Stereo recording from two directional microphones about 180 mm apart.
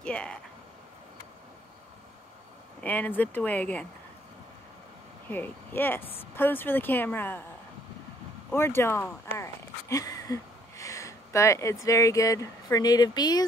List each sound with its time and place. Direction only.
0.0 s a sound: 5° left (ahead or behind)
2.8 s speech: 10° left (ahead or behind)
5.3 s speech: 10° left (ahead or behind)
8.5 s speech: 15° left (ahead or behind)